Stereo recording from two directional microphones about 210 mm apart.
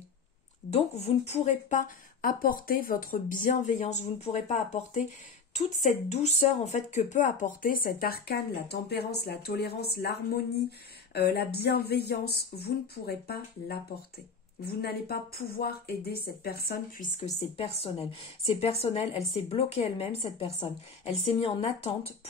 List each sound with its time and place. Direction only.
0.7 s speech: 30° left (ahead or behind)
17.6 s a woman's voice: 25° left (ahead or behind)